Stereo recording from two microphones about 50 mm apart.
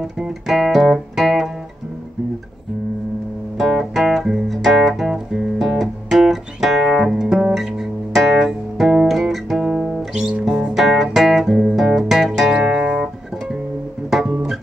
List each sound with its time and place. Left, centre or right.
0.5 s music: centre
4.1 s music: centre
7.3 s guitar: centre
10.1 s music: centre
12.5 s music: right
14.1 s music: centre